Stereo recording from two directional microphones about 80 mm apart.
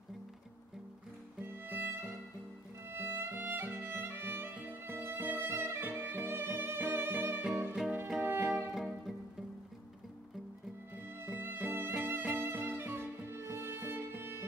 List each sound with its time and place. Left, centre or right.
1.4 s music: right
7.8 s music: centre
8.2 s music: right
8.7 s music: centre
11.1 s music: right